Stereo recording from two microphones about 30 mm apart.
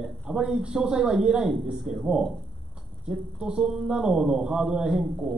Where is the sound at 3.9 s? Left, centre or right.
Right.